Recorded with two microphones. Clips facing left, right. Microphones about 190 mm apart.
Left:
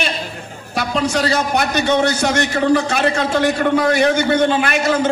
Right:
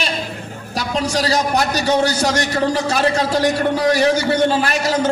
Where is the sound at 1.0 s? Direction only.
35° right (ahead or behind).